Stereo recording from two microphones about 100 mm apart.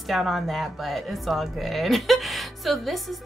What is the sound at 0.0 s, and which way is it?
Speech, centre (ahead or behind).